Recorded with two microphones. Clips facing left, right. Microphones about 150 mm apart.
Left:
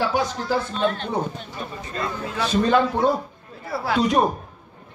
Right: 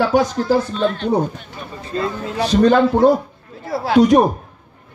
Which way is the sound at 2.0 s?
35° right (ahead or behind).